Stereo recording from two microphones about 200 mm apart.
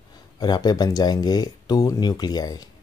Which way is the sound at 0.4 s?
20° left (ahead or behind).